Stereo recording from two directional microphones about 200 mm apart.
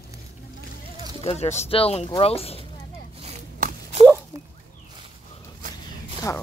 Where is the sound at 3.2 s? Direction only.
30° right (ahead or behind).